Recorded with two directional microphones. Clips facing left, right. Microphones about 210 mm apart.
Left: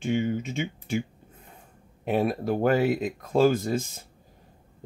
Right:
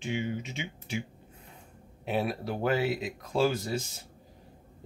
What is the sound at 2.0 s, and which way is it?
Speech, 50° left (ahead or behind).